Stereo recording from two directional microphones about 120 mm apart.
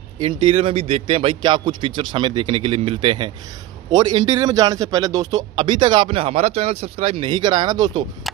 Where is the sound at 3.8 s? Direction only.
40° right (ahead or behind).